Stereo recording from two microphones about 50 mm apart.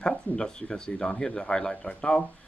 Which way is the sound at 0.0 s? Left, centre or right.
Centre.